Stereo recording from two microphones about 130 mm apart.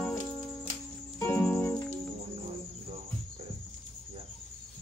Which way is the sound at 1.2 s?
15° left (ahead or behind).